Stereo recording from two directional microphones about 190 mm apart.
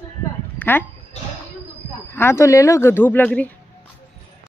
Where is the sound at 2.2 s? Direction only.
15° left (ahead or behind).